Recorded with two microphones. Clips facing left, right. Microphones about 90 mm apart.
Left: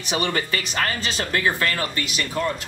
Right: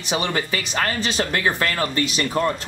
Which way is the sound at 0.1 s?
20° right (ahead or behind).